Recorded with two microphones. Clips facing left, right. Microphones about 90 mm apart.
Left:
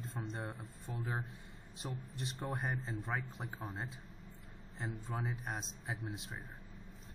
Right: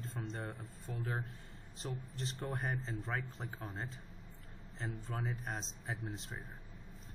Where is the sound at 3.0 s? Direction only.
15° left (ahead or behind).